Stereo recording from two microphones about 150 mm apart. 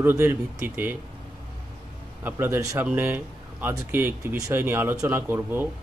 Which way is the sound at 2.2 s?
15° right (ahead or behind).